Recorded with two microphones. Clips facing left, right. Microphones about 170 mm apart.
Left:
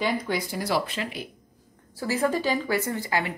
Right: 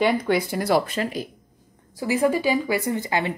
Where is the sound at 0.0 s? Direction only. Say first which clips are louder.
Right 6 dB; 60° right (ahead or behind); by 1.2 s 45° right (ahead or behind).